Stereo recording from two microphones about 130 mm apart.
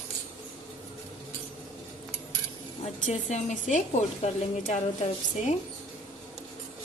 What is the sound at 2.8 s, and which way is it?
A woman's voice, 65° left (ahead or behind).